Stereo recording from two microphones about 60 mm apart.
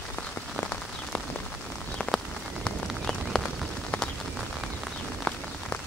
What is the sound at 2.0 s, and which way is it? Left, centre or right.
Rain on surface, centre.